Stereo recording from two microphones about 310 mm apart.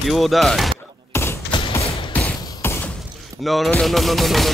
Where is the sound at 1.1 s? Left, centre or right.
Centre.